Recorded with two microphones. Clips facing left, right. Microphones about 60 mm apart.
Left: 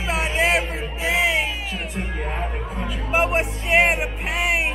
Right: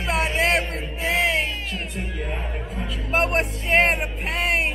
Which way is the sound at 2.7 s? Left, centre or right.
Centre.